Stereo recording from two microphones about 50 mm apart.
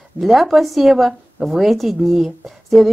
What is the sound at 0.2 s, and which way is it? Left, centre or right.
Speech, centre.